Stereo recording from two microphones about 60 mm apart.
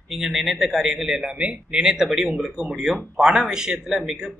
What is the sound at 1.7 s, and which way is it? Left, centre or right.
Speech, centre.